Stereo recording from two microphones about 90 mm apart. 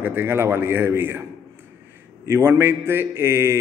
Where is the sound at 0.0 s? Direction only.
25° right (ahead or behind).